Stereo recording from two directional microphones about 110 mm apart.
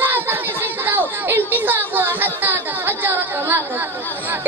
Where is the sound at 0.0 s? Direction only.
20° right (ahead or behind).